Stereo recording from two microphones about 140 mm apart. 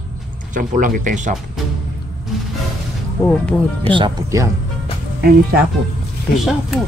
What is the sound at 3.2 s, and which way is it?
Speech, 10° left (ahead or behind).